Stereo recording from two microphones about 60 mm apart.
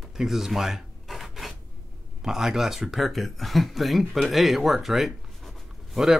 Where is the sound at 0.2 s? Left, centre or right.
Centre.